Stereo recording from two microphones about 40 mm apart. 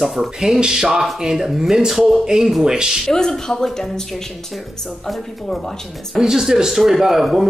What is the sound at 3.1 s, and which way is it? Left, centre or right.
Speech, centre.